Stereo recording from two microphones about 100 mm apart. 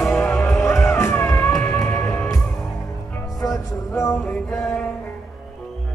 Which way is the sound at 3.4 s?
30° left (ahead or behind).